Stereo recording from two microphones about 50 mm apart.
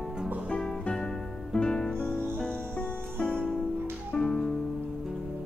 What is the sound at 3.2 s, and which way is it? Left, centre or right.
Music, centre.